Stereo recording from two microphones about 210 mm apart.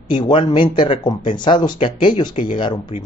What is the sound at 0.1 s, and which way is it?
Speech, 20° left (ahead or behind).